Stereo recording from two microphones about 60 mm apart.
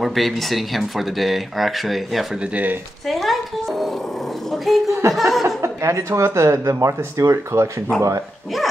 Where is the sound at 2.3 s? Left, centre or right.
Centre.